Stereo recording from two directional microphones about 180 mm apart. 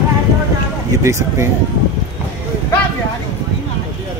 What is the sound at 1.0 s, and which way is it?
Speech, 15° right (ahead or behind).